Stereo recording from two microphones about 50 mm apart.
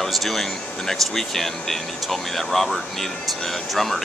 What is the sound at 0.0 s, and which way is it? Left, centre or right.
Speech, centre.